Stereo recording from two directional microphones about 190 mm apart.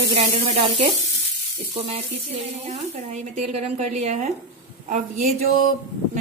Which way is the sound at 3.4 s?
35° right (ahead or behind).